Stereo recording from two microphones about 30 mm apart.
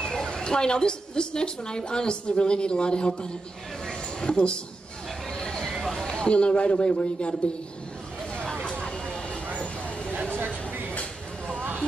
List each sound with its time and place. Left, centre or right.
0.0 s a woman's voice: left
3.8 s a sound: left
5.9 s speech: left
8.6 s vehicle: left
9.6 s vehicle: left
10.3 s a sound: right